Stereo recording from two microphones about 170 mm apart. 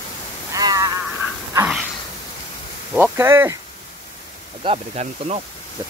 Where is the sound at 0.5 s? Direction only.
20° right (ahead or behind).